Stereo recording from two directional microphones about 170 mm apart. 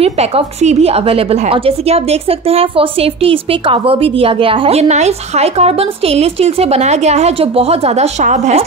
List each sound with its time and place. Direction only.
0.0 s a woman's voice: 35° right (ahead or behind)